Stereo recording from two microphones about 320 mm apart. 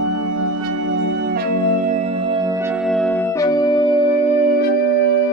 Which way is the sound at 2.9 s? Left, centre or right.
Centre.